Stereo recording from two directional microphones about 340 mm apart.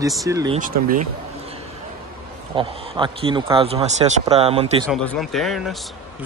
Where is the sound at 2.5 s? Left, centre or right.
Centre.